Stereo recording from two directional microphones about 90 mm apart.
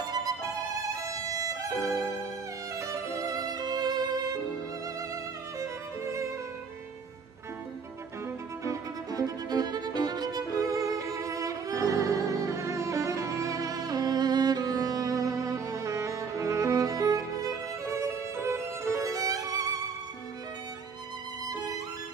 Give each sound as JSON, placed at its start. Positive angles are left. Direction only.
{"t": 0.0, "sound": "violin", "side_deg": -45}
{"t": 2.7, "sound": "violin", "side_deg": -35}
{"t": 8.6, "sound": "violin", "side_deg": -40}
{"t": 21.5, "sound": "music", "side_deg": -45}